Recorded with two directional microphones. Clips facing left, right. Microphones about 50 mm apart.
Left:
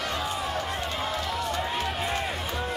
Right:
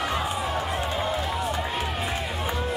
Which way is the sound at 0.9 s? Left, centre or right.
Centre.